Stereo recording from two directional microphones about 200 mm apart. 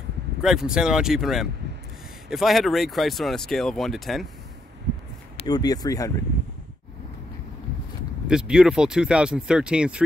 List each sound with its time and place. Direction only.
0.4 s speech: centre (ahead or behind)
5.4 s speech: 20° left (ahead or behind)
8.3 s speech: 5° right (ahead or behind)